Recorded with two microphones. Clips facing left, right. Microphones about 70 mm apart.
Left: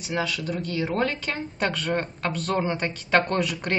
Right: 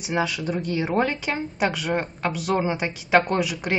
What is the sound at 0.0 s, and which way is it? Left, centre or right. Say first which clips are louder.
A woman's voice: right 3 dB; centre.